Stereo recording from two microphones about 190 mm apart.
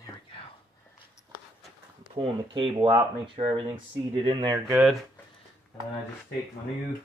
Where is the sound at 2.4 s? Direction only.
25° right (ahead or behind).